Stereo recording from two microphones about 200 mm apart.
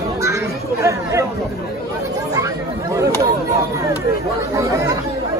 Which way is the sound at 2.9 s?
15° right (ahead or behind).